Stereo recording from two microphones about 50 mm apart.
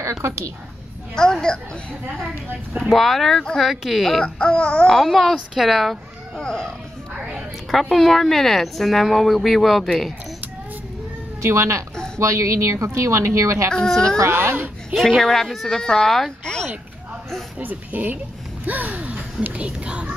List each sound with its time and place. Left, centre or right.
0.0 s a woman's voice: right
1.1 s speech: centre
2.8 s speech: centre
4.4 s speech: left
5.1 s speech: centre
6.3 s speech: centre
7.7 s speech: centre
11.4 s speech: right
13.7 s speech: centre
14.3 s speech: right
15.0 s speech: centre
17.6 s speech: right
18.7 s gasp: right
19.5 s speech: right